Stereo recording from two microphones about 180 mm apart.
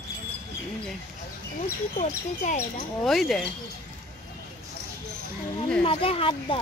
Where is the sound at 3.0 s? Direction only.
Centre (ahead or behind).